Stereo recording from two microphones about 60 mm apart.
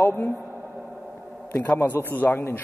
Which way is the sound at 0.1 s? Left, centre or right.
Left.